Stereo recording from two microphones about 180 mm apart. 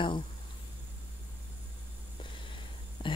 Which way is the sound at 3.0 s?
25° left (ahead or behind).